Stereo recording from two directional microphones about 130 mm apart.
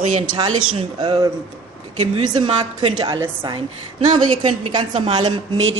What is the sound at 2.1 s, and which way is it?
A woman's voice, 40° right (ahead or behind).